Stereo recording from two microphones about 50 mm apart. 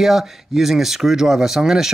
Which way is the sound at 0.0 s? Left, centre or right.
Centre.